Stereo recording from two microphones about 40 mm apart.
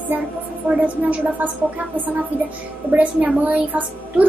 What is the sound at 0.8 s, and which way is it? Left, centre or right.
A woman's voice, right.